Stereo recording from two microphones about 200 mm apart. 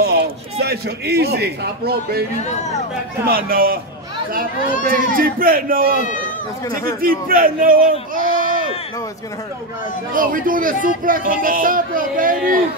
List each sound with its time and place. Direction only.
0.0 s a man's voice: 55° right (ahead or behind)
2.4 s speech: 35° left (ahead or behind)
3.3 s speech: 45° right (ahead or behind)
4.8 s speech: 45° right (ahead or behind)
7.0 s a man's voice: 45° right (ahead or behind)
10.1 s speech: 45° right (ahead or behind)